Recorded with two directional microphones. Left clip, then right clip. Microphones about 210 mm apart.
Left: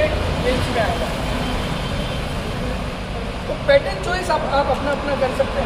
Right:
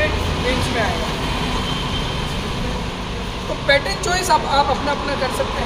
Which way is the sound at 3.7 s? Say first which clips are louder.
Left 1 dB; 25° right (ahead or behind).